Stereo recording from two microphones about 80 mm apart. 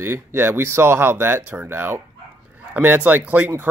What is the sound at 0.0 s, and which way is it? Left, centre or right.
Speech, right.